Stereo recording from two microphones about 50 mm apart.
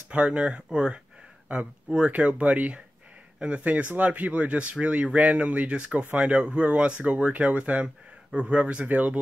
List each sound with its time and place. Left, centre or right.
0.1 s speech: right